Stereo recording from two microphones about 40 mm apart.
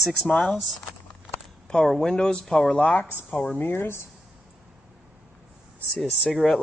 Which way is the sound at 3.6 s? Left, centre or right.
Left.